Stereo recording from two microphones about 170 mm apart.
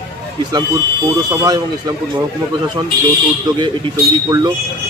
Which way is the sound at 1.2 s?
25° right (ahead or behind).